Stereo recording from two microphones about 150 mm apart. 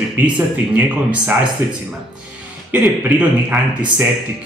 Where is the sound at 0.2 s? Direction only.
10° right (ahead or behind).